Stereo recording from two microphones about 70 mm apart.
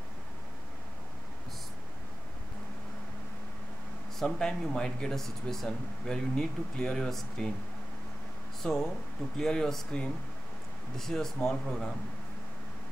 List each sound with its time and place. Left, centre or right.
4.2 s speech: centre
8.6 s speech: centre